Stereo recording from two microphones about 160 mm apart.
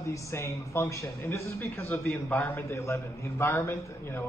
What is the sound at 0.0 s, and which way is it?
A man's voice, 15° left (ahead or behind).